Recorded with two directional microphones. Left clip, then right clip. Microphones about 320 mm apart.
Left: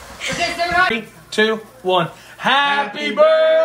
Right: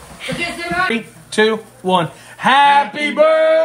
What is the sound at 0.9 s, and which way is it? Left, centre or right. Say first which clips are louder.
Speech: right 1 dB; right.